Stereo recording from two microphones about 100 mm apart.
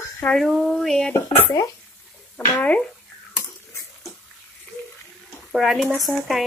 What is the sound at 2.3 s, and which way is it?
Speech, 15° left (ahead or behind).